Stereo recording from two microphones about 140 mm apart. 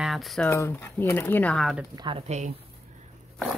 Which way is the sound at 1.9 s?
30° right (ahead or behind).